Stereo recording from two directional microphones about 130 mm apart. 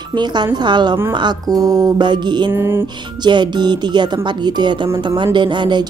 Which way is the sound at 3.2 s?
35° right (ahead or behind).